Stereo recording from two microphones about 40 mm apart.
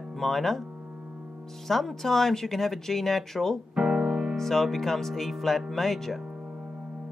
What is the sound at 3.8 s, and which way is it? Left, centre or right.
Piano, centre.